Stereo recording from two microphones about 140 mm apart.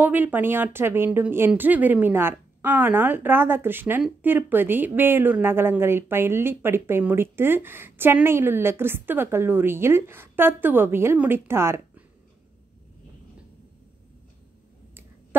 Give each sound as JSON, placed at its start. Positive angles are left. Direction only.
{"t": 0.0, "sound": "a woman's voice", "side_deg": -15}